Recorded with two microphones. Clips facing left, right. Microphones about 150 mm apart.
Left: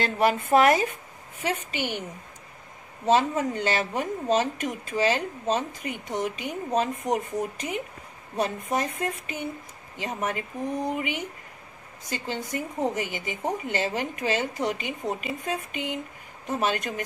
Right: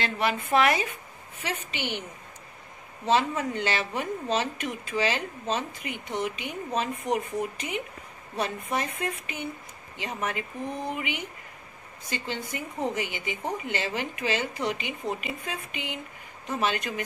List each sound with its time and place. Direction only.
0.0 s a woman's voice: 45° left (ahead or behind)
3.1 s a woman's voice: 40° left (ahead or behind)